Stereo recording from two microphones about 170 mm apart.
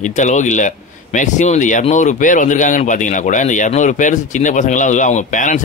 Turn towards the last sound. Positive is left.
turn(degrees=50)  # may be behind; listen again after turning